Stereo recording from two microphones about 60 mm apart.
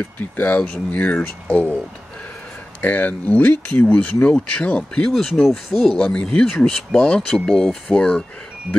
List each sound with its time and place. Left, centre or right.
0.2 s speech: left
2.8 s speech: left
5.0 s speech: centre
6.0 s speech: centre